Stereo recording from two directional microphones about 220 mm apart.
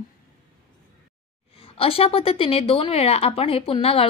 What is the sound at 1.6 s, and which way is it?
A woman's voice, 25° left (ahead or behind).